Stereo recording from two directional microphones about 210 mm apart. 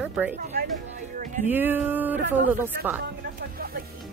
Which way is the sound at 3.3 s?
45° right (ahead or behind).